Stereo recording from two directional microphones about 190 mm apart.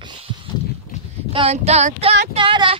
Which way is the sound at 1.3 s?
30° right (ahead or behind).